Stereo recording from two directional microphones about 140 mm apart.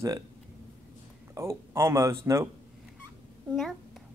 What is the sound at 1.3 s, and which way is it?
Speech, 20° right (ahead or behind).